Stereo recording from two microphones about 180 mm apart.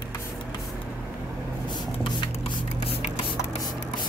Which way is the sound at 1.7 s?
25° left (ahead or behind).